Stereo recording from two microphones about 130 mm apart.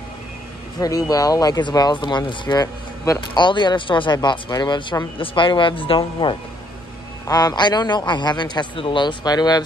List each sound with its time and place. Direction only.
0.7 s speech: 25° left (ahead or behind)
7.2 s speech: 30° left (ahead or behind)